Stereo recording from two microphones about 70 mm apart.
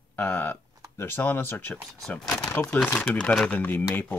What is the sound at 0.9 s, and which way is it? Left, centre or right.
Speech, left.